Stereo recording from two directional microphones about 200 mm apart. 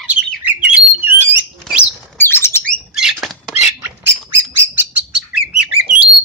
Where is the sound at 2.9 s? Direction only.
Centre (ahead or behind).